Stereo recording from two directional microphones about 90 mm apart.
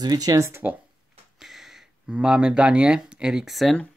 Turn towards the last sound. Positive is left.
turn(degrees=0)  # may be behind; listen again after turning